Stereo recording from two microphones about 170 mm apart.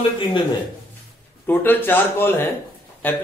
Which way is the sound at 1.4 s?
10° left (ahead or behind).